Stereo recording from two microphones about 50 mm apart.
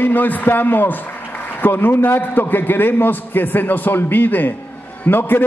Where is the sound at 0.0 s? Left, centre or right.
Left.